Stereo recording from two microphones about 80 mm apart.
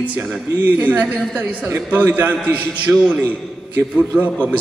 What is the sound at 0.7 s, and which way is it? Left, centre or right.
A man's voice, centre.